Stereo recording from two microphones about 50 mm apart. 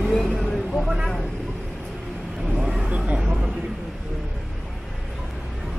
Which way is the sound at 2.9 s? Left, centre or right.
Right.